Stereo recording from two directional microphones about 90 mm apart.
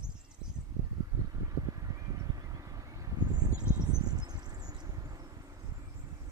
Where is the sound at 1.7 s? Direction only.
40° right (ahead or behind).